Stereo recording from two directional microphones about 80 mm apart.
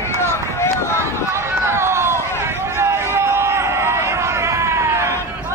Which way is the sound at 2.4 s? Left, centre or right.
Right.